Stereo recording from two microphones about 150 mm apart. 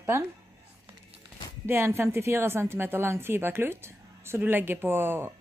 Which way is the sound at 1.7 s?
15° right (ahead or behind).